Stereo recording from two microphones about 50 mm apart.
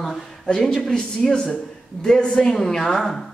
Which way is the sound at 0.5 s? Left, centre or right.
Centre.